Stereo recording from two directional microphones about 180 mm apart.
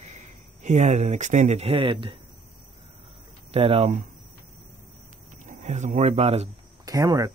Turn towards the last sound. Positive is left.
turn(degrees=-20)  # may be behind; listen again after turning